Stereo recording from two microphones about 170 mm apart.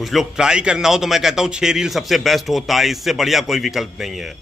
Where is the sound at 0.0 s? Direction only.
Centre (ahead or behind).